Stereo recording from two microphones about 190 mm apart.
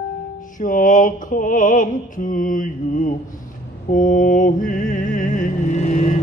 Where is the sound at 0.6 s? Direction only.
45° left (ahead or behind).